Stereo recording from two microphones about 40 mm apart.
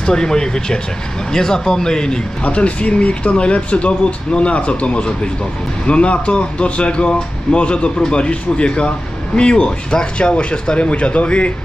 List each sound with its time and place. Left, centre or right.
0.0 s a man's voice: centre
2.4 s speech: left